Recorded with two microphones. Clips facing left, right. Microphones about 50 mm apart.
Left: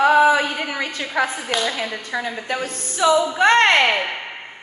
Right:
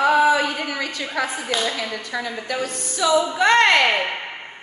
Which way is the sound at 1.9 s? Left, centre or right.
Left.